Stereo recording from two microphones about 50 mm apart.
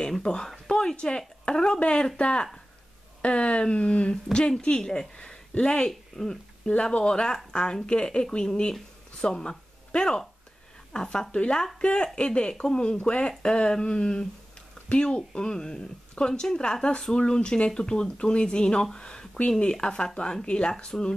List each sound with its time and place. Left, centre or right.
0.2 s speech: centre
6.7 s speech: left